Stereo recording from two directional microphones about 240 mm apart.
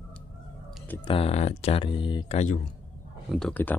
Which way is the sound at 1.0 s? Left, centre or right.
Left.